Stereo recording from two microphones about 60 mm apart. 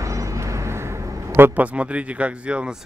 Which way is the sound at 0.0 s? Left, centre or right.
Right.